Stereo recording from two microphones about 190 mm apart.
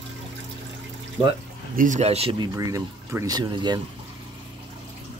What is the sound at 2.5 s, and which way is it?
Speech, 15° right (ahead or behind).